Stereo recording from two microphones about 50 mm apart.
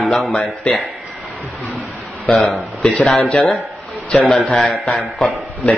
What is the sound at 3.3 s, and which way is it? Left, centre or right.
Speech, centre.